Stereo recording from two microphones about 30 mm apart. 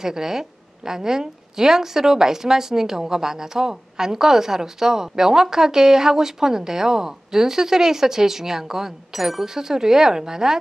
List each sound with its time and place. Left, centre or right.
0.0 s a woman's voice: centre